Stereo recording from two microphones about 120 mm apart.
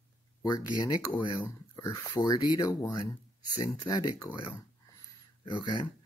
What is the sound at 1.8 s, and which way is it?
Speech, 25° left (ahead or behind).